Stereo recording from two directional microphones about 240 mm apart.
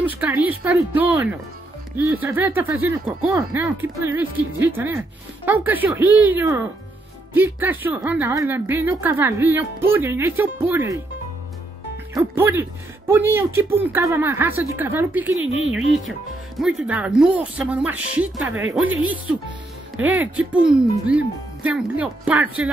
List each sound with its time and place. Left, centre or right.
0.1 s a woman's voice: centre
12.1 s a woman's voice: centre
15.3 s speech: right
16.5 s a woman's voice: centre
20.0 s a woman's voice: centre